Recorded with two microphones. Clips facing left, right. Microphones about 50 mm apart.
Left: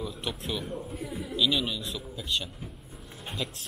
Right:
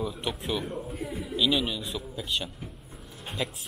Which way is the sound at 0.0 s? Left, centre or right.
Centre.